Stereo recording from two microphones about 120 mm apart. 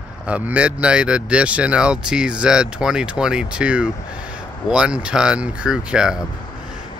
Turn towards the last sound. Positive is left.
turn(degrees=-5)  # may be behind; listen again after turning